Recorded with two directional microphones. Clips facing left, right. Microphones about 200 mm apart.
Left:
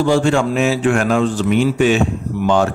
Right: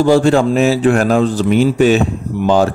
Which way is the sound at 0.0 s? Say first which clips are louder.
Right 4 dB; 40° right (ahead or behind).